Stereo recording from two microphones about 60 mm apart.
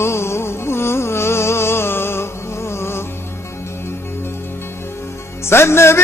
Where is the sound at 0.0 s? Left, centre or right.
Left.